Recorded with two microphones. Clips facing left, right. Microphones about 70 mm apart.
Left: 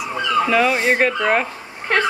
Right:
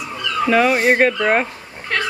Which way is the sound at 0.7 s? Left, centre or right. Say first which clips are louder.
Right 3 dB; right.